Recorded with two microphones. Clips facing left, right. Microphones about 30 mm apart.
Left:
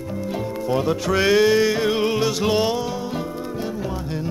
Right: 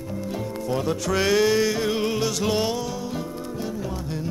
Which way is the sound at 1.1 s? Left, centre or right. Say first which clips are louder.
Left 4 dB; centre.